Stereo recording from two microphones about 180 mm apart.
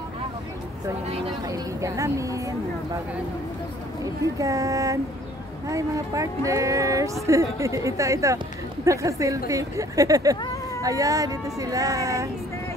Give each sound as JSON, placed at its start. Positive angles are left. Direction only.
{"t": 1.5, "sound": "speech", "side_deg": -15}
{"t": 4.0, "sound": "speech", "side_deg": -20}